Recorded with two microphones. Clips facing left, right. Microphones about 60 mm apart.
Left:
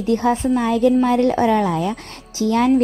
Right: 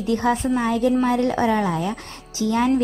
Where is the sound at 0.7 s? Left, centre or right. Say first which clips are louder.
Left 5 dB; left.